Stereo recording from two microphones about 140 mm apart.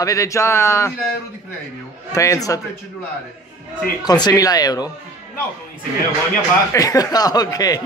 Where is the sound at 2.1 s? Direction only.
25° left (ahead or behind).